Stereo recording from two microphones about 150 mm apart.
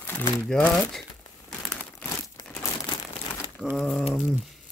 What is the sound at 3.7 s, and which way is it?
Speech, centre (ahead or behind).